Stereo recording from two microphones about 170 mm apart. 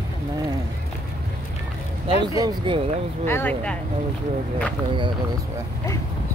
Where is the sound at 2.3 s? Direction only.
25° right (ahead or behind).